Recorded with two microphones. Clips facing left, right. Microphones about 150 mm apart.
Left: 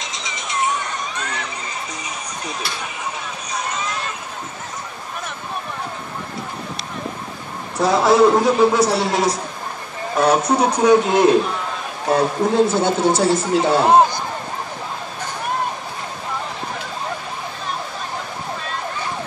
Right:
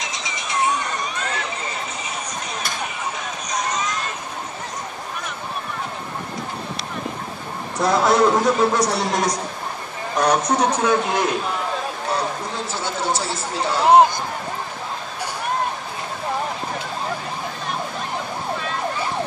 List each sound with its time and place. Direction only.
7.8 s a man's voice: 5° left (ahead or behind); by 11.3 s 20° left (ahead or behind)
12.1 s a man's voice: 55° left (ahead or behind)